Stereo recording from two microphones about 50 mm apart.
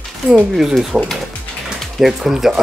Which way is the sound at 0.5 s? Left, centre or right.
Centre.